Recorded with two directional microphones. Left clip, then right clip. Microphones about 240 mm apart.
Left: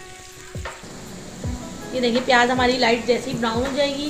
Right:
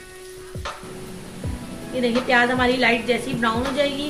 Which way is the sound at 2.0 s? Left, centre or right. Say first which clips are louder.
Left 1 dB; centre.